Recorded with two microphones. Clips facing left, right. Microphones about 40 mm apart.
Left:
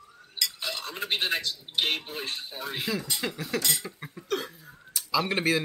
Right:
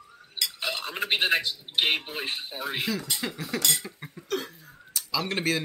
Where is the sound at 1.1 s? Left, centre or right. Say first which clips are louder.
Right 4 dB; centre.